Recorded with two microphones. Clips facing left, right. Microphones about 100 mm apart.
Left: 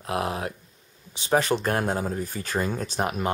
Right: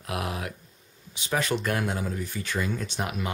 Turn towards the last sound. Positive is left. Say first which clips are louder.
# left 5 dB
turn(degrees=40)  # may be behind; listen again after turning